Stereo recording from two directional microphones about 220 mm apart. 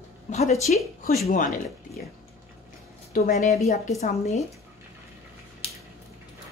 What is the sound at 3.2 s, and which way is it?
A woman's voice, 30° left (ahead or behind).